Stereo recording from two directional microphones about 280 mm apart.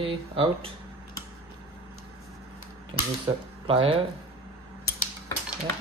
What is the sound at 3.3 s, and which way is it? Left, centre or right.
Speech, centre.